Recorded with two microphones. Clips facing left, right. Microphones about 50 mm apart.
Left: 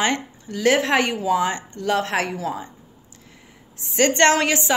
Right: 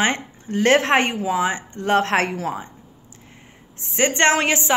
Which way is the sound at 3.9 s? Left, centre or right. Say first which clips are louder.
Left 1 dB; right.